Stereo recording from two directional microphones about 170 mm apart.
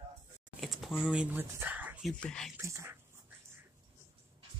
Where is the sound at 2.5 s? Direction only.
15° right (ahead or behind).